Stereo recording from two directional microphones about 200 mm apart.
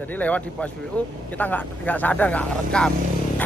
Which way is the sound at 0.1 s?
5° left (ahead or behind).